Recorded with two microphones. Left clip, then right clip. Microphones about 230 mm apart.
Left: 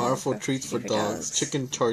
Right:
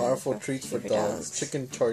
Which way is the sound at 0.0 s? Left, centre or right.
Left.